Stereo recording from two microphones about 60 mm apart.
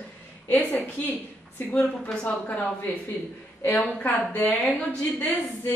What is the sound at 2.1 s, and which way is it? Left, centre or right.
Speech, centre.